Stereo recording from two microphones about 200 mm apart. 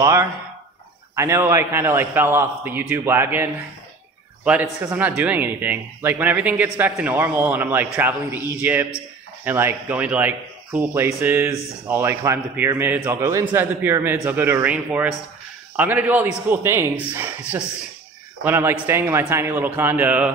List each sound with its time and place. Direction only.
0.0 s speech: 15° right (ahead or behind)
4.9 s speech: 5° right (ahead or behind)